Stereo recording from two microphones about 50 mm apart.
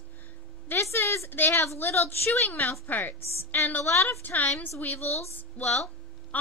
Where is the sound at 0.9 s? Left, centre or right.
Left.